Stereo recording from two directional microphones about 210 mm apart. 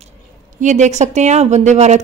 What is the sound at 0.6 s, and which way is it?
A woman's voice, 35° right (ahead or behind).